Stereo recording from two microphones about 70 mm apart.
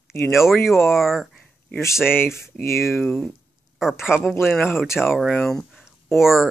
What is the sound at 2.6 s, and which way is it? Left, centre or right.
Speech, left.